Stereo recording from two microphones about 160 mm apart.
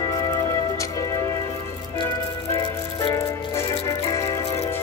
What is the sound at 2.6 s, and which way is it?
Music, 25° left (ahead or behind).